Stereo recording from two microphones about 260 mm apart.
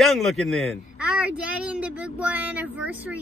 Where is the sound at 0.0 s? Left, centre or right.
Centre.